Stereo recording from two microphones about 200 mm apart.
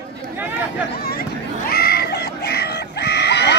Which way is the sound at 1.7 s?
50° left (ahead or behind).